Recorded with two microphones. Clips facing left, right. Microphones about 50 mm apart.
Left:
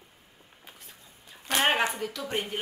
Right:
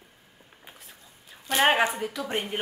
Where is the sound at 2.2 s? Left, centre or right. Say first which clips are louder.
Even; right.